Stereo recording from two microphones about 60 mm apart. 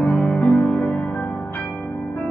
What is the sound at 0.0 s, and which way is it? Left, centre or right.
Music, left.